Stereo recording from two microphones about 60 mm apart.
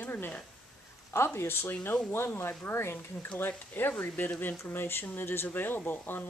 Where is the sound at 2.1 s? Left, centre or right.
Left.